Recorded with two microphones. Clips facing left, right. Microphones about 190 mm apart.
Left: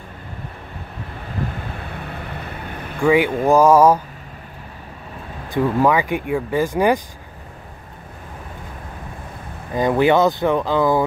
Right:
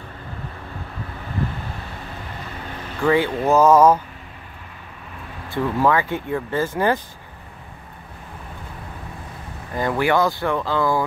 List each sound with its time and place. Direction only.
3.0 s speech: 10° left (ahead or behind)
5.5 s speech: 15° left (ahead or behind)
9.8 s speech: 20° left (ahead or behind)